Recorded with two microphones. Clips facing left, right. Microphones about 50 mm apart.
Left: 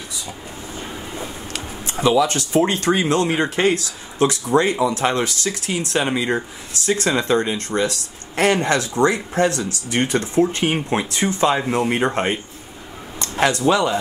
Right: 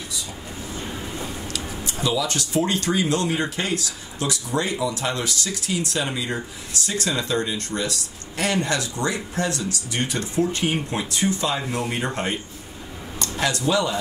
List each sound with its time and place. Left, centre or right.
1.5 s speech: left